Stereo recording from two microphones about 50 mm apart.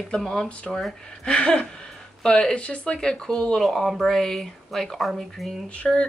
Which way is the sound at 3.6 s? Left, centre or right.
Centre.